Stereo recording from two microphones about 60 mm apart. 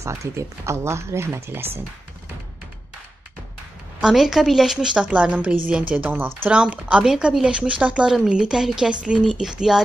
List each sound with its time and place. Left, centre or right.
0.0 s speech: right
4.0 s a woman's voice: centre; by 6.1 s right
6.1 s speech: right
6.5 s a woman's voice: centre